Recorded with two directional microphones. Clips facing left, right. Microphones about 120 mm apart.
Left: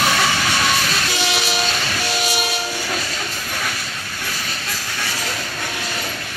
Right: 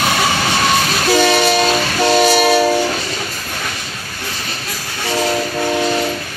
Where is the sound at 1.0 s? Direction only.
60° right (ahead or behind).